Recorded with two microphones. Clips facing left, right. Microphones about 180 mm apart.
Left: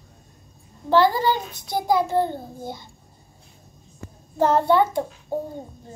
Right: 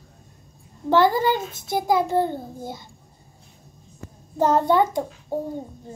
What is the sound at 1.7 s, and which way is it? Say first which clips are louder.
Speech: even; 20° left (ahead or behind).